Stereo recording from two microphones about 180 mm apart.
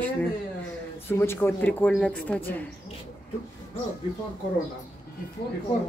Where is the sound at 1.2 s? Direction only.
10° left (ahead or behind).